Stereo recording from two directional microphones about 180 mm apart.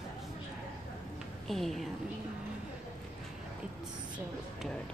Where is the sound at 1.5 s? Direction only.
Centre (ahead or behind).